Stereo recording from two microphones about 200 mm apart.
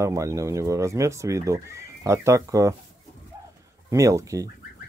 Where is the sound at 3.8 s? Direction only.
15° right (ahead or behind).